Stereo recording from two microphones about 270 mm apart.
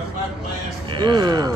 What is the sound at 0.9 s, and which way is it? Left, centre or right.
Speech, centre.